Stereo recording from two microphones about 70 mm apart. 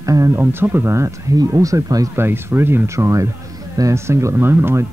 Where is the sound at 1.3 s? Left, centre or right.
Right.